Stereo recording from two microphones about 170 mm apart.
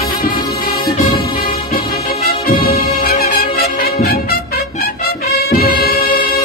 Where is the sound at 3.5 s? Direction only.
65° left (ahead or behind).